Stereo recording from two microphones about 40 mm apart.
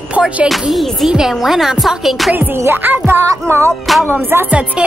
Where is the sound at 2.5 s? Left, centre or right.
Right.